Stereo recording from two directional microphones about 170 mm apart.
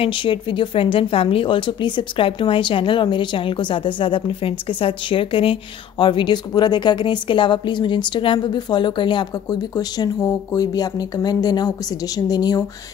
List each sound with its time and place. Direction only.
0.0 s speech: 30° left (ahead or behind)